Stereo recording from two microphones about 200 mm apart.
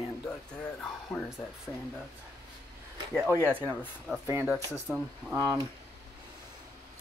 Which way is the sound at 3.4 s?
10° right (ahead or behind).